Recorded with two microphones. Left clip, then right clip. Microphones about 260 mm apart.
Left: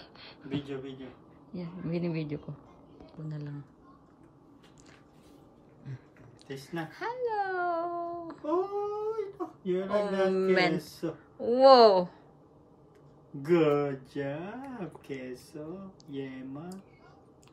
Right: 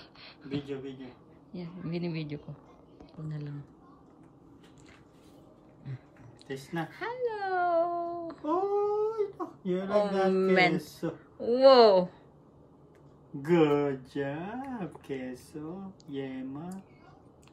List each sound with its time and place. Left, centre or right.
0.0 s a sound: centre
1.5 s speech: centre
3.0 s speech: centre
6.4 s speech: centre
13.4 s speech: centre